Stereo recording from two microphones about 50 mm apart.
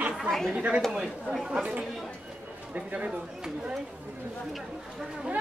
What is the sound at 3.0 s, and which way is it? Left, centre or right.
Speech, centre.